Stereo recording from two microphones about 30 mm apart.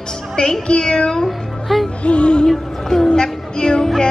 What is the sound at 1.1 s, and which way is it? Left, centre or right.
Speech, centre.